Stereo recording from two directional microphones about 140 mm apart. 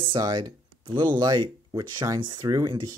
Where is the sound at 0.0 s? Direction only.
35° right (ahead or behind).